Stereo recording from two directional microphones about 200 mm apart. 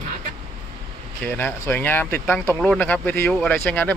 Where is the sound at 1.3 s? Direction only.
10° left (ahead or behind).